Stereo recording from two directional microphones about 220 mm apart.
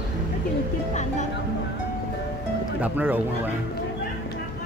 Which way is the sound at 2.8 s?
10° right (ahead or behind).